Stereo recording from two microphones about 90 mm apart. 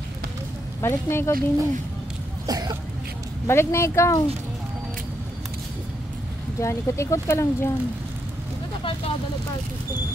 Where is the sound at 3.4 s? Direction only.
30° left (ahead or behind).